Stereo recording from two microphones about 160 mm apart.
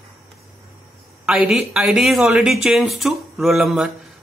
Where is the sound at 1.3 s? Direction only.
Centre (ahead or behind).